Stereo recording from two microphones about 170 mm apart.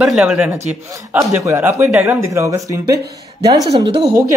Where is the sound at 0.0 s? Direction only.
Centre (ahead or behind).